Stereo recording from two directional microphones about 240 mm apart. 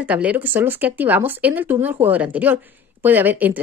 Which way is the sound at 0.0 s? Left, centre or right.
Centre.